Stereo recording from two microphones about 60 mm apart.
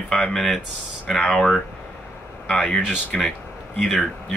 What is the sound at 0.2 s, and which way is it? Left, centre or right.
Speech, centre.